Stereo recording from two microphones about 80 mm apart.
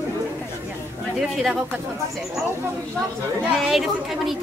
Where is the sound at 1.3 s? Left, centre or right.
Centre.